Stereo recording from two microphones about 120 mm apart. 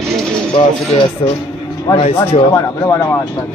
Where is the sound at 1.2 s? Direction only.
55° left (ahead or behind).